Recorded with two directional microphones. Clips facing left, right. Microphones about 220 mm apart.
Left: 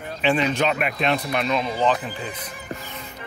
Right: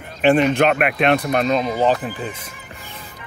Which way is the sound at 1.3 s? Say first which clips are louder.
Right 5 dB; 40° right (ahead or behind).